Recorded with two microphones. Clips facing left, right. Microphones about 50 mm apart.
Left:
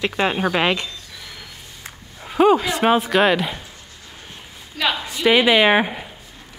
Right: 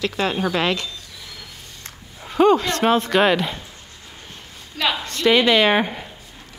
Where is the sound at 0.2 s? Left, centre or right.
Left.